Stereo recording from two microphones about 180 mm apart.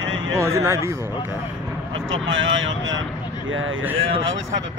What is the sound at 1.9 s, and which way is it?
Speech, 90° right.